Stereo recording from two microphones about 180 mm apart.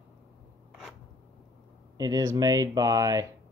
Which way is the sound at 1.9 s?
20° right (ahead or behind).